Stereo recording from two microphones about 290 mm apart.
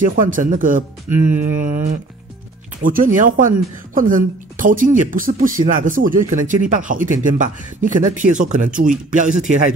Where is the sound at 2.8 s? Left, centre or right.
Right.